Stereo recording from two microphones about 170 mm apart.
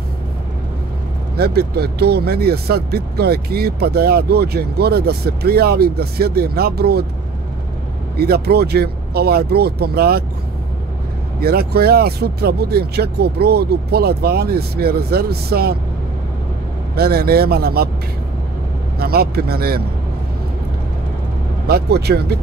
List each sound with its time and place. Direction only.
1.3 s speech: 70° right (ahead or behind)
8.2 s speech: 70° right (ahead or behind)
11.4 s speech: 65° right (ahead or behind)
16.9 s speech: 65° right (ahead or behind)
18.9 s speech: 65° right (ahead or behind)
21.6 s speech: 70° right (ahead or behind)